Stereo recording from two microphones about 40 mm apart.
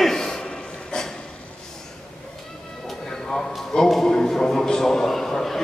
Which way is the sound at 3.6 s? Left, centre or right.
Centre.